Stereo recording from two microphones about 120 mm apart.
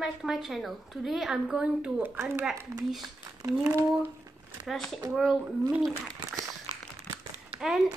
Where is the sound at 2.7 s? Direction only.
25° right (ahead or behind).